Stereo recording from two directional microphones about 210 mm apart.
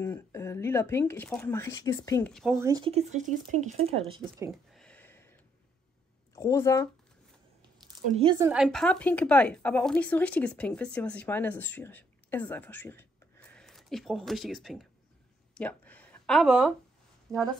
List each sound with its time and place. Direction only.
0.0 s speech: 10° left (ahead or behind)
2.3 s speech: centre (ahead or behind)
2.6 s speech: 15° right (ahead or behind)
2.9 s speech: 30° right (ahead or behind)
4.5 s a sound: centre (ahead or behind)
6.3 s speech: 15° left (ahead or behind)
8.0 s speech: 30° right (ahead or behind)
8.4 s speech: 10° right (ahead or behind)
8.6 s speech: 5° left (ahead or behind)
15.5 s a sound: 5° left (ahead or behind)
16.4 s speech: centre (ahead or behind)
17.3 s speech: 15° right (ahead or behind)